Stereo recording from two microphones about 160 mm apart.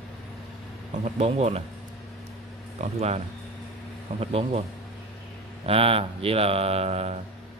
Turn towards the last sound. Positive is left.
turn(degrees=-40)  # may be behind; listen again after turning